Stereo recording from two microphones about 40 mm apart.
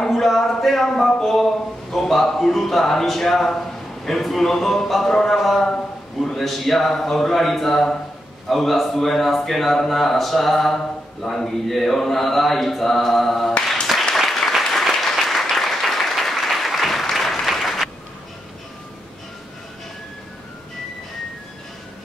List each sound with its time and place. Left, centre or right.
0.0 s speech: centre
14.1 s applause: centre